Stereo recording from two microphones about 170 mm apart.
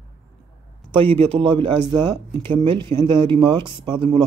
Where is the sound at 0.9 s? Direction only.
35° right (ahead or behind).